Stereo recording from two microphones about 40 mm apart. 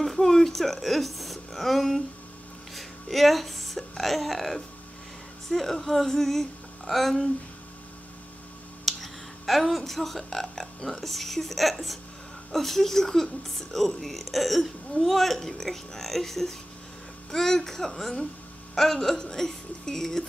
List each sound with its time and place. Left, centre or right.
0.0 s a woman's voice: centre
8.8 s a woman's voice: centre